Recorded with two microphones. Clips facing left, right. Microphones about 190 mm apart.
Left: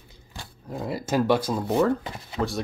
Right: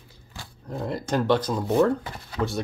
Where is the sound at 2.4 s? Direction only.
30° left (ahead or behind).